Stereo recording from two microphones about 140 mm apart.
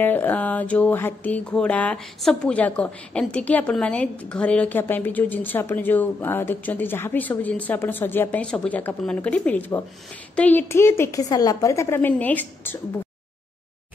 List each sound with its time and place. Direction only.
0.0 s a woman's voice: 15° left (ahead or behind)